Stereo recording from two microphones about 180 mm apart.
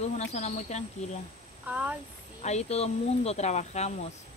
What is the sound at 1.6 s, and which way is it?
Speech, 10° right (ahead or behind).